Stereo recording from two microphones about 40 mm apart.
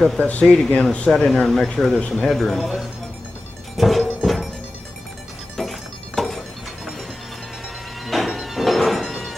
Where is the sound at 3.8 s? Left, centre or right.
Centre.